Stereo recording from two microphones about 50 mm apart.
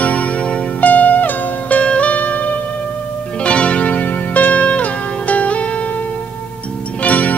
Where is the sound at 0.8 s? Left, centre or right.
Left.